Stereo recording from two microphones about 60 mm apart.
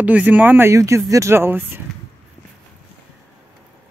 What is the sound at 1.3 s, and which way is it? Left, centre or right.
Speech, right.